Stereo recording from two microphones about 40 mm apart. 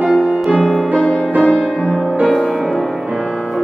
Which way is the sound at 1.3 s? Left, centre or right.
Left.